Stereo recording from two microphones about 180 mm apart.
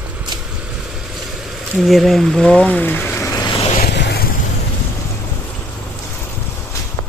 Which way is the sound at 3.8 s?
70° left (ahead or behind).